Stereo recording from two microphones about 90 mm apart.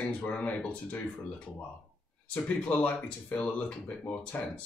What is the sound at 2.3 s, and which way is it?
Speech, 15° left (ahead or behind).